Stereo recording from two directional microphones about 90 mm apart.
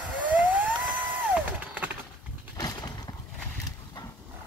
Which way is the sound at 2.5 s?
45° left (ahead or behind).